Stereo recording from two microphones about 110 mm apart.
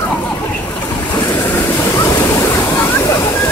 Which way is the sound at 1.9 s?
25° left (ahead or behind).